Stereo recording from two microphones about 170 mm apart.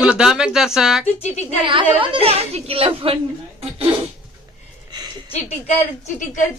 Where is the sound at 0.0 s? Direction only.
5° right (ahead or behind).